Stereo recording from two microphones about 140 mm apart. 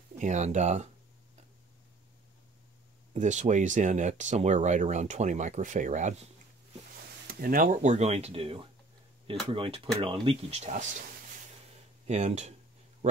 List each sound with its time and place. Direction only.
0.2 s speech: 55° right (ahead or behind)
3.1 s speech: 60° right (ahead or behind)
7.3 s speech: 90° right; by 10.9 s 55° right (ahead or behind)
12.1 s speech: 50° right (ahead or behind)